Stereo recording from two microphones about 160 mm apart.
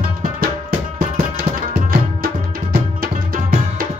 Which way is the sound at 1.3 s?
65° right (ahead or behind).